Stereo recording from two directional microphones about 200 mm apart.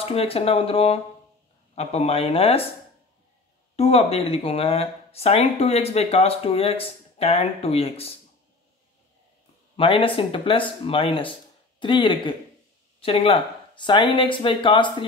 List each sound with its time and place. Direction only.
0.0 s speech: 30° left (ahead or behind)
3.7 s speech: 30° left (ahead or behind)
9.8 s speech: 25° left (ahead or behind)